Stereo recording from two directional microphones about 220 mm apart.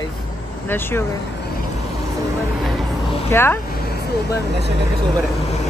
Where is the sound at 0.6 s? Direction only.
10° left (ahead or behind).